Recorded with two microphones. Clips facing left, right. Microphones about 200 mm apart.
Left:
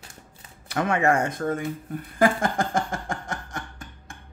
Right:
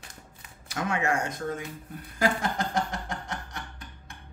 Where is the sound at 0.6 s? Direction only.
60° left (ahead or behind).